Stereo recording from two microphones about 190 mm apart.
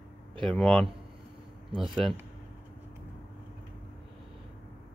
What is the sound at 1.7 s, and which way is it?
Speech, 25° right (ahead or behind).